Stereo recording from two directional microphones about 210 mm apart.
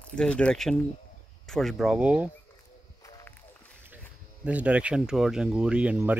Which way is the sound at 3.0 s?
10° left (ahead or behind).